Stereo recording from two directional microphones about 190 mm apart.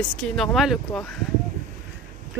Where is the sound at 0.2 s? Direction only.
Centre (ahead or behind).